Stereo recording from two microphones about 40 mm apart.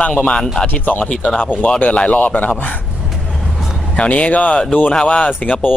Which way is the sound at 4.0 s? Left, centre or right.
Left.